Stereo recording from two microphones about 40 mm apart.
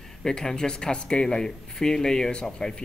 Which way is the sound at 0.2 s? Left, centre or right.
Centre.